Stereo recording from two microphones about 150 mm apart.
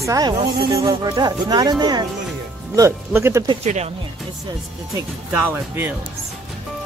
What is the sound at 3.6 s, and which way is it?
Speech, 45° right (ahead or behind).